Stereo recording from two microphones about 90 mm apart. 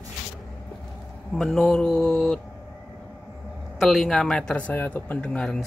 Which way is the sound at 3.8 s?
5° left (ahead or behind).